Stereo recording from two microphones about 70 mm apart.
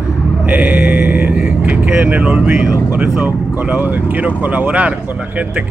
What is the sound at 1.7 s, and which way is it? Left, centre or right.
Speech, right.